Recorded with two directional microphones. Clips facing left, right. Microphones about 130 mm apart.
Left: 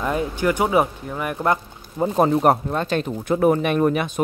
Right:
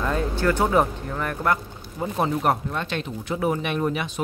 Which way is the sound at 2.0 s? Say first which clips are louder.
Left 7 dB; 40° left (ahead or behind).